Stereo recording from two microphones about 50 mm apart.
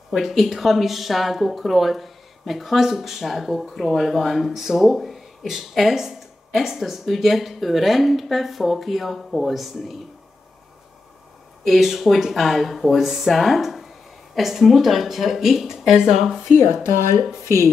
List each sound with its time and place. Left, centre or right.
0.1 s speech: centre
11.6 s speech: centre
16.5 s speech: left